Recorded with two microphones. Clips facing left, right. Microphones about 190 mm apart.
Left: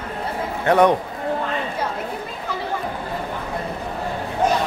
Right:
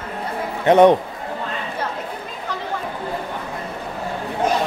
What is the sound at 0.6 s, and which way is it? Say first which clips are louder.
Speech: right 4 dB; 20° right (ahead or behind).